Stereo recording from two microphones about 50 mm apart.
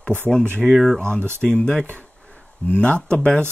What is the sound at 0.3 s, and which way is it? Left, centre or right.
Speech, centre.